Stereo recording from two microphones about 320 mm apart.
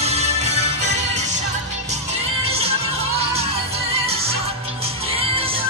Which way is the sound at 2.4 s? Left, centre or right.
Centre.